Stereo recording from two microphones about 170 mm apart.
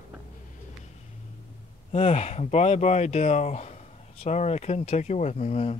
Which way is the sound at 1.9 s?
40° left (ahead or behind).